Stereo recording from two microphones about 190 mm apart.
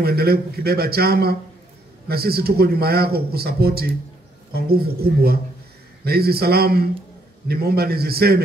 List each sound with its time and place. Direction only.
0.0 s speech: 55° right (ahead or behind)